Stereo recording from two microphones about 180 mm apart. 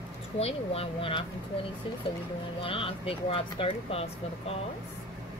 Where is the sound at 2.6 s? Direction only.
30° left (ahead or behind).